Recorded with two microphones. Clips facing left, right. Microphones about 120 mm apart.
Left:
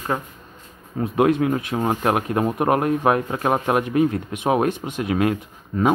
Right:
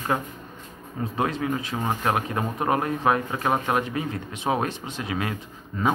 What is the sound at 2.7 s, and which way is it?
Speech, 40° left (ahead or behind).